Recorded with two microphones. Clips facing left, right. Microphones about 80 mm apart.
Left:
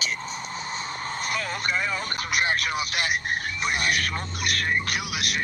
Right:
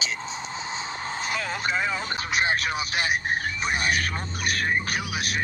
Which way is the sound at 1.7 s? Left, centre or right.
Right.